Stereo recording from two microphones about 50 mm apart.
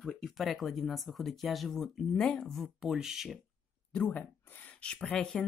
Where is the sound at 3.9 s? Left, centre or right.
Left.